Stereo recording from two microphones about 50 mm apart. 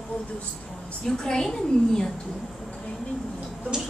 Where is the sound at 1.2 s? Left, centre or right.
Centre.